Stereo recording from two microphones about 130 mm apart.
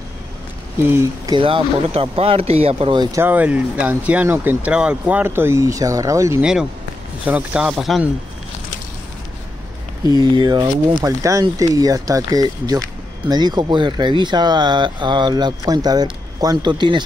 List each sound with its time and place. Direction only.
0.8 s speech: 20° right (ahead or behind)
1.3 s speech: 40° right (ahead or behind)
3.1 s speech: 15° right (ahead or behind)
6.4 s a man's voice: 5° right (ahead or behind)
10.2 s speech: 35° right (ahead or behind)